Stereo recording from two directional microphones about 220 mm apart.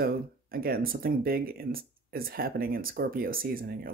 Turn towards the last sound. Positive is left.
turn(degrees=-40)  # may be behind; listen again after turning